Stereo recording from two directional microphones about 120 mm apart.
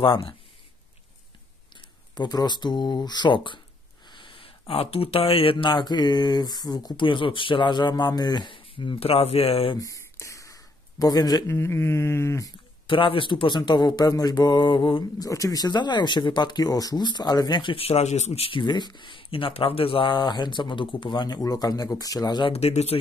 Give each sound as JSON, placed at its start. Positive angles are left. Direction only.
{"t": 0.0, "sound": "speech", "side_deg": 45}
{"t": 2.1, "sound": "speech", "side_deg": 35}
{"t": 9.8, "sound": "a sound", "side_deg": 25}
{"t": 11.5, "sound": "mantra", "side_deg": 20}
{"t": 12.8, "sound": "speech", "side_deg": 45}
{"t": 15.1, "sound": "speech", "side_deg": 30}
{"t": 22.5, "sound": "speech", "side_deg": 60}